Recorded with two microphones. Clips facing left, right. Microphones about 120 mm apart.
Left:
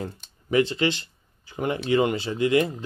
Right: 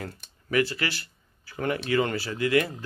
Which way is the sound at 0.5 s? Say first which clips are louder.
Left 4 dB; 25° left (ahead or behind).